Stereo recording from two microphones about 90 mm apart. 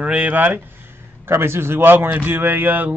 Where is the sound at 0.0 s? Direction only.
15° right (ahead or behind).